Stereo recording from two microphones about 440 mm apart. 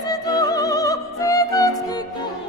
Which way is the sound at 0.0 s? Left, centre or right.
Centre.